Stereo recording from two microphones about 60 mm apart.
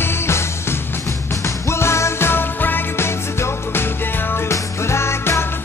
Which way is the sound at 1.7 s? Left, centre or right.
Left.